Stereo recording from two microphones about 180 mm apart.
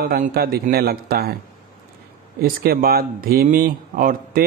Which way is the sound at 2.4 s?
55° right (ahead or behind).